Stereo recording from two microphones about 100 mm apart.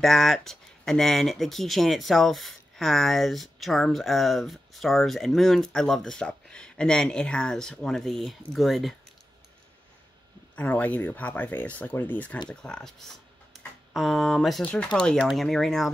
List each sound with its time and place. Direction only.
0.0 s speech: 5° left (ahead or behind)
10.5 s speech: 15° left (ahead or behind)
14.6 s speech: 10° left (ahead or behind)